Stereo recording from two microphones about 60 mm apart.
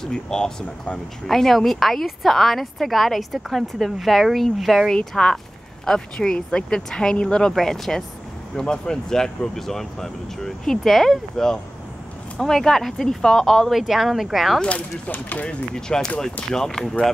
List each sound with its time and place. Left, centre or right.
0.0 s a woman's voice: centre
14.6 s speech: centre
15.7 s speech: centre